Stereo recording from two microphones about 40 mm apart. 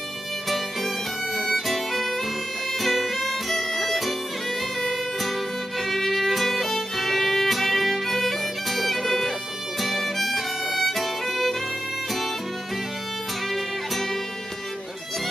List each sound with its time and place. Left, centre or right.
0.5 s violin: centre
2.7 s music: centre
5.8 s violin: centre